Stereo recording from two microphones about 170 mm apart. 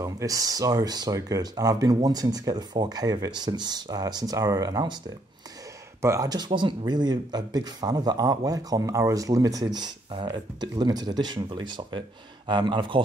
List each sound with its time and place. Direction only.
0.0 s speech: 20° right (ahead or behind)
5.9 s speech: 15° right (ahead or behind)